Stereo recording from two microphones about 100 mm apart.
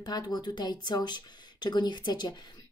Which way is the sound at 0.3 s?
45° left (ahead or behind).